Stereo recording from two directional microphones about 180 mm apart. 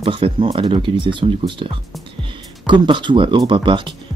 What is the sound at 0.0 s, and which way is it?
Speech, 30° right (ahead or behind).